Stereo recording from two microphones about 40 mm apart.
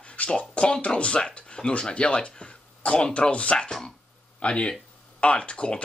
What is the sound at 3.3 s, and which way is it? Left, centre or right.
Speech, left.